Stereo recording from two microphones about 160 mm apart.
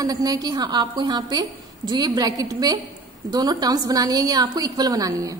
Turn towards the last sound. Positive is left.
turn(degrees=-20)  # may be behind; listen again after turning